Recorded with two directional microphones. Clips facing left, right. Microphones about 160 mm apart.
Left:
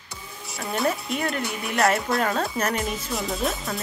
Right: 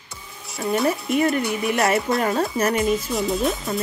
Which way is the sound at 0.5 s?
Centre (ahead or behind).